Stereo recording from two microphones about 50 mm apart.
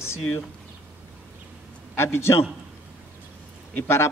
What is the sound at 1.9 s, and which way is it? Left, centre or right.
Speech, left.